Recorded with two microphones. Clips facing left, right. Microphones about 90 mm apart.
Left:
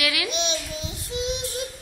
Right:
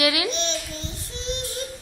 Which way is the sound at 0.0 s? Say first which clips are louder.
Right 4 dB; 25° right (ahead or behind).